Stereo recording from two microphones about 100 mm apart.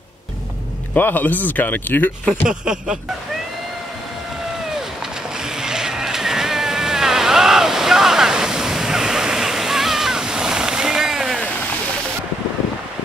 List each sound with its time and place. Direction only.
0.9 s speech: 20° left (ahead or behind)
2.4 s a sound: 5° right (ahead or behind)
5.4 s vehicle: 5° right (ahead or behind)